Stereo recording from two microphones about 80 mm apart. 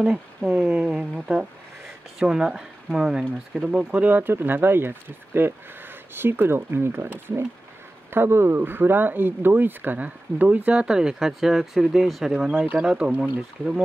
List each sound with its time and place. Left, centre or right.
0.0 s speech: centre
0.5 s speech: right